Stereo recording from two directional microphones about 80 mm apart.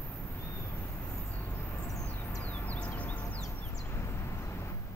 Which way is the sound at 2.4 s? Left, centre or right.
Centre.